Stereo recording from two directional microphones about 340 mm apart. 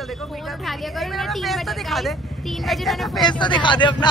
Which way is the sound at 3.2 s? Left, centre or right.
Centre.